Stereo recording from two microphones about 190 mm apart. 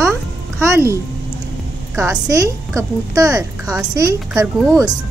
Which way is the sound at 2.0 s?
15° right (ahead or behind).